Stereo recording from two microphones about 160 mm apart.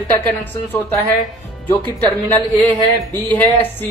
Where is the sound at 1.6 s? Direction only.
10° left (ahead or behind).